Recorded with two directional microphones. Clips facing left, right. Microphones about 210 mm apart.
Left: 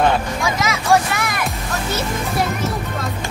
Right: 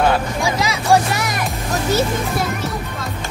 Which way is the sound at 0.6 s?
35° right (ahead or behind).